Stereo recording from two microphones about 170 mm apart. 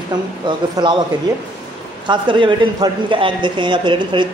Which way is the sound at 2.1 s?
30° right (ahead or behind).